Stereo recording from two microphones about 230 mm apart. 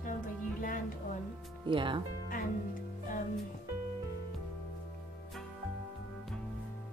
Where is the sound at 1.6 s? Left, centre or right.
Right.